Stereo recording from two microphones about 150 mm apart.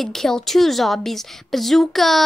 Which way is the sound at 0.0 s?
Centre (ahead or behind).